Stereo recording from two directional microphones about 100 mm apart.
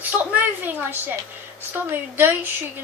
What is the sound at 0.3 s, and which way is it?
A child's voice, 15° right (ahead or behind).